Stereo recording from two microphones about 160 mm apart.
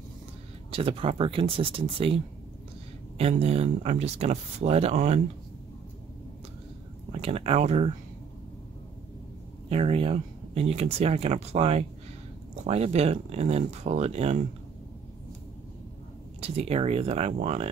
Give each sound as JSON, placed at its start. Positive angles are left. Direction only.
{"t": 0.7, "sound": "speech", "side_deg": -35}
{"t": 7.1, "sound": "speech", "side_deg": -40}
{"t": 9.7, "sound": "speech", "side_deg": -35}
{"t": 16.3, "sound": "speech", "side_deg": -40}